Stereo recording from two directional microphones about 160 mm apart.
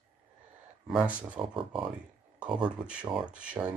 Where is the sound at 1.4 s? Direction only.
30° right (ahead or behind).